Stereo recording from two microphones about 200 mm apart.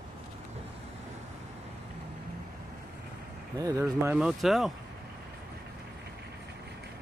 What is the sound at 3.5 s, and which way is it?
Speech, 15° right (ahead or behind).